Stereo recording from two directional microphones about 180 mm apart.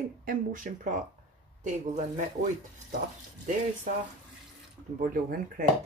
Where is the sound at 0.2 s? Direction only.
50° right (ahead or behind).